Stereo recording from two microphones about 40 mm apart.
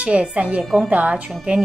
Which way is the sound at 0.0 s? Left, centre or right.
Right.